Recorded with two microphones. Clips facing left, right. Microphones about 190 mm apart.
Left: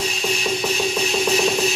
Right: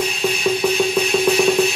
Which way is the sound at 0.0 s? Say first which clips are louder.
Right 4 dB; 60° right (ahead or behind).